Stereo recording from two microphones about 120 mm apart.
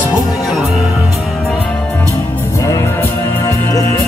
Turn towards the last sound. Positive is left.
turn(degrees=25)  # may be behind; listen again after turning